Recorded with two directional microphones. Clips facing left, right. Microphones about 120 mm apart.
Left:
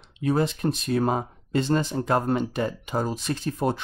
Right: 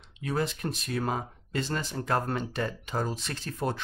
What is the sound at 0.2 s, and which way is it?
Speech, 25° left (ahead or behind).